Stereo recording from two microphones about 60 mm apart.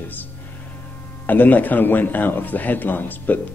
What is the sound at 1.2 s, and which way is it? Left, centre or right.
Speech, left.